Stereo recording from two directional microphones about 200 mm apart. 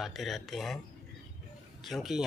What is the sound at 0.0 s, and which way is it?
Speech, centre (ahead or behind).